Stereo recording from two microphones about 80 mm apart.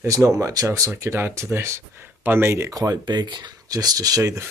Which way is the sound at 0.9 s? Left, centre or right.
Right.